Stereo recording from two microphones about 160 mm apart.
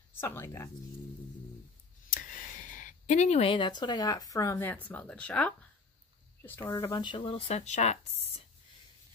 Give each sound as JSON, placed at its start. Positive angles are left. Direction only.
{"t": 0.1, "sound": "speech", "side_deg": 15}
{"t": 2.1, "sound": "speech", "side_deg": 55}
{"t": 7.4, "sound": "speech", "side_deg": 45}